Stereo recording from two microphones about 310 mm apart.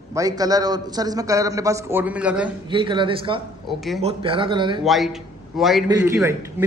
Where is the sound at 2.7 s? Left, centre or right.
Centre.